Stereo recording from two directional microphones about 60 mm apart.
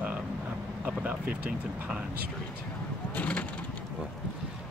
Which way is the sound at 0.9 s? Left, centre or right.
Right.